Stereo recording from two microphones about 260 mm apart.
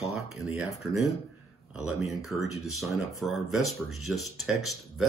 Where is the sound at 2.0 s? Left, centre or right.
Centre.